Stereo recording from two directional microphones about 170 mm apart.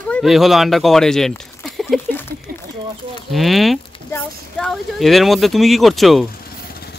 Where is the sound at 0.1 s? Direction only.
Centre (ahead or behind).